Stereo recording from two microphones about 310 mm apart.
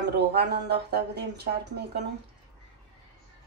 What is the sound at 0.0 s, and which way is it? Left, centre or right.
Speech, right.